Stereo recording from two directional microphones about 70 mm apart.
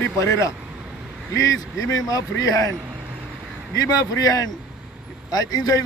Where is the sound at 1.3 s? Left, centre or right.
Left.